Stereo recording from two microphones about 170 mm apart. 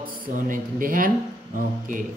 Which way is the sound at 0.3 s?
50° right (ahead or behind).